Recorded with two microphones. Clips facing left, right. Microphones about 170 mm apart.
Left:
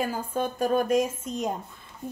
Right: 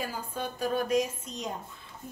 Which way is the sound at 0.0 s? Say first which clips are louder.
Left 7 dB; 50° left (ahead or behind).